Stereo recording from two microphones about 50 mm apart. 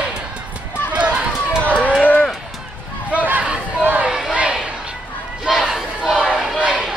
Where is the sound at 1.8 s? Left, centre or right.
Left.